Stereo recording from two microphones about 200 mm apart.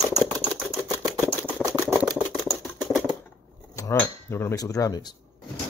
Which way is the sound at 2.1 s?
Centre (ahead or behind).